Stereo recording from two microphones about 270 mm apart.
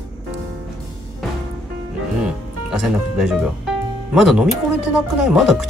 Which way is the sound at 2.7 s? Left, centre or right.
Centre.